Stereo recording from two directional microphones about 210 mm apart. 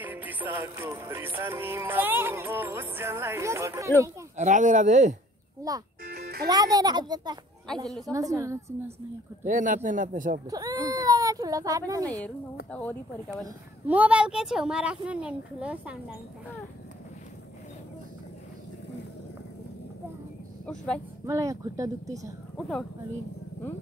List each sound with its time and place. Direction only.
0.0 s music: 10° right (ahead or behind)
4.4 s speech: 35° right (ahead or behind)
6.0 s music: 45° right (ahead or behind)
6.4 s a child's voice: 20° right (ahead or behind)
8.1 s music: 15° right (ahead or behind)
9.4 s speech: 40° right (ahead or behind)
10.4 s speech: 15° right (ahead or behind)
12.7 s speech: 10° left (ahead or behind)
13.8 s a child's voice: 5° right (ahead or behind)
20.6 s a child's voice: 5° left (ahead or behind)
21.3 s music: 15° right (ahead or behind)
22.6 s a child's voice: centre (ahead or behind)